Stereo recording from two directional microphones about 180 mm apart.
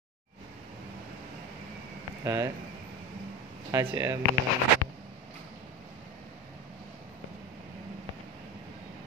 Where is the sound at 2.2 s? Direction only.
20° right (ahead or behind).